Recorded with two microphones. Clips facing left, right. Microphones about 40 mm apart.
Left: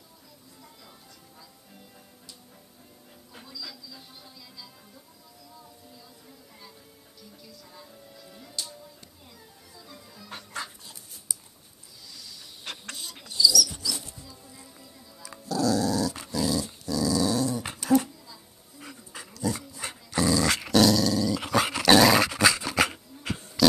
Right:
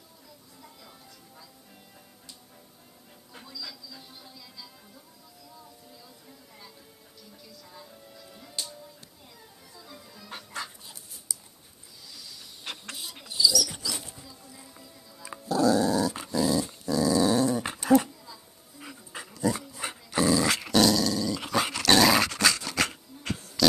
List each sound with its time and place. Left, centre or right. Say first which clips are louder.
3.3 s music: even; centre
7.4 s music: right 1 dB; centre
9.8 s music: even; centre
12.2 s snake: even; centre
13.3 s dog: left 2 dB; right
14.3 s music: even; centre
15.4 s dog: right 2 dB; right
17.6 s a sound: even; right
18.2 s music: right 1 dB; centre
19.8 s dog: even; centre
20.4 s dog: left 2 dB; centre